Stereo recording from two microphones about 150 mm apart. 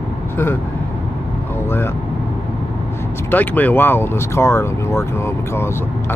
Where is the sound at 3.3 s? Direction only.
10° left (ahead or behind).